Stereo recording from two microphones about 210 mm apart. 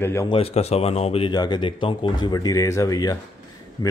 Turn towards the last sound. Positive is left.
turn(degrees=20)  # may be behind; listen again after turning